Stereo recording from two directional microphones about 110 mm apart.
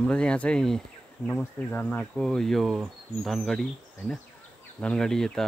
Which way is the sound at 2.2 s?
5° left (ahead or behind).